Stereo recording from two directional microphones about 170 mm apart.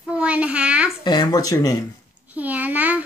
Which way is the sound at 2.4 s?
10° right (ahead or behind).